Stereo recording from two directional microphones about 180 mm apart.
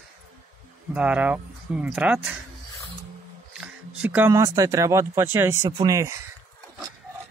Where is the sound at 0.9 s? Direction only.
5° right (ahead or behind).